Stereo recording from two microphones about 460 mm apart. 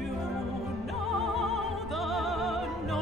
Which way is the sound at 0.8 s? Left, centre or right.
Centre.